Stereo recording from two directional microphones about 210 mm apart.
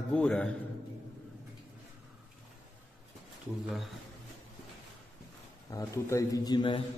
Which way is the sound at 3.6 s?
Centre (ahead or behind).